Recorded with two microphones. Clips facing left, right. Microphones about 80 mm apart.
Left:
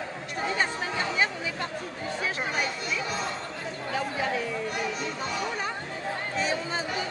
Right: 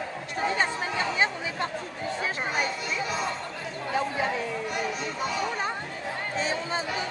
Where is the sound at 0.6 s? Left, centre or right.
Right.